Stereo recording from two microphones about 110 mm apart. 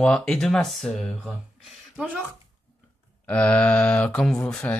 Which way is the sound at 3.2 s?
15° left (ahead or behind).